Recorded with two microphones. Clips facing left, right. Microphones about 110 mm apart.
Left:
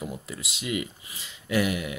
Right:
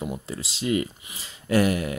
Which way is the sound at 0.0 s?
30° right (ahead or behind).